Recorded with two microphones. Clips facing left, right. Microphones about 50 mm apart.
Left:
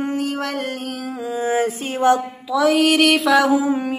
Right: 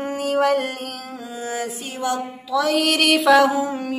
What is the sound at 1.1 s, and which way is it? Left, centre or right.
Mantra, centre.